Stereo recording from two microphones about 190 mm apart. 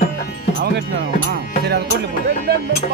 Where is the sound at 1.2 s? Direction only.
60° right (ahead or behind).